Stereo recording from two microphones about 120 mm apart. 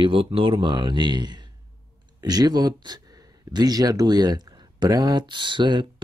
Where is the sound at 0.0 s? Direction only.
50° right (ahead or behind).